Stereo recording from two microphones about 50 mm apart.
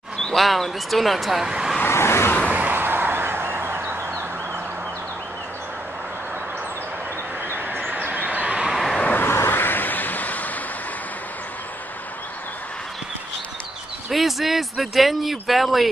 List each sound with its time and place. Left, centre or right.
0.4 s speech: centre
1.4 s speech: centre
1.9 s vehicle: left
2.4 s a sound: right
2.7 s a sound: right
7.9 s vehicle: right
8.6 s vehicle: centre
9.2 s a sound: left
14.1 s speech: centre